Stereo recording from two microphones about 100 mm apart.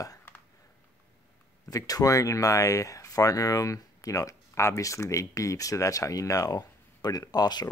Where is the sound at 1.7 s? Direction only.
35° left (ahead or behind).